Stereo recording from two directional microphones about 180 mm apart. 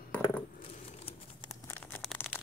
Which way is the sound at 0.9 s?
35° left (ahead or behind).